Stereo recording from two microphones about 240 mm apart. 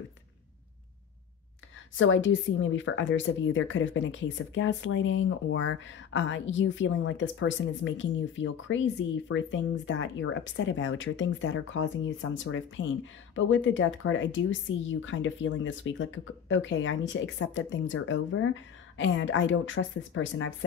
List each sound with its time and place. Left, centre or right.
2.0 s speech: left